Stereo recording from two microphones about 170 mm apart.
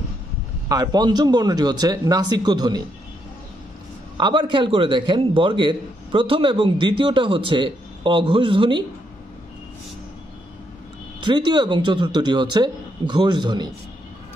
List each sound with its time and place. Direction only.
0.7 s a man's voice: 25° right (ahead or behind)
4.2 s a man's voice: 30° right (ahead or behind)
11.1 s a man's voice: 25° right (ahead or behind)